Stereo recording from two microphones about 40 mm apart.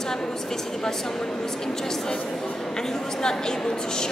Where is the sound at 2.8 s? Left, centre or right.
Centre.